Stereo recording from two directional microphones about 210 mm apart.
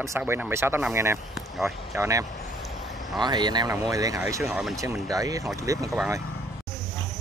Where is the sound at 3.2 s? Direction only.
20° right (ahead or behind).